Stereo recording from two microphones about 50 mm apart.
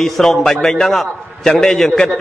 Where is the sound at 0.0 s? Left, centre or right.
Centre.